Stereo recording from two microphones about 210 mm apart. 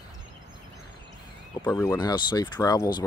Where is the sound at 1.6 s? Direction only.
15° left (ahead or behind).